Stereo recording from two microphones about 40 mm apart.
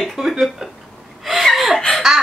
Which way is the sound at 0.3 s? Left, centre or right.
Centre.